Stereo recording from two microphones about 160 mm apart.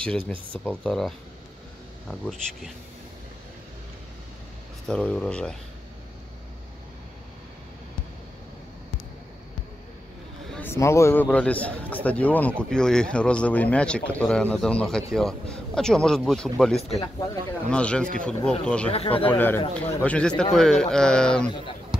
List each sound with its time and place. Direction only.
0.5 s a man's voice: 10° left (ahead or behind)
4.8 s speech: 5° left (ahead or behind)
10.5 s a man's voice: 15° left (ahead or behind)
18.9 s speech: 35° left (ahead or behind)
19.2 s a man's voice: 10° left (ahead or behind)